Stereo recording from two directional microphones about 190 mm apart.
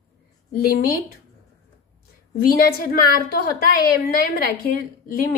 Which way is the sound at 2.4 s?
50° left (ahead or behind).